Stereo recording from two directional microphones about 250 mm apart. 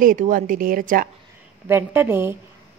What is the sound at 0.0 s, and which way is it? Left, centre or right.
A woman's voice, right.